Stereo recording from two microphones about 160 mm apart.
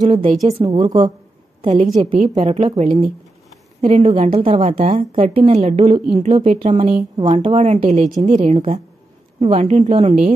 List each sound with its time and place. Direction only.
0.3 s speech: 40° right (ahead or behind)
0.7 s a woman's voice: 30° right (ahead or behind)
4.6 s a woman's voice: 45° right (ahead or behind)